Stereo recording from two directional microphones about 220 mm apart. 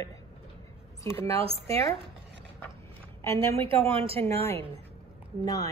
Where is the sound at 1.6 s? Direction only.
15° left (ahead or behind).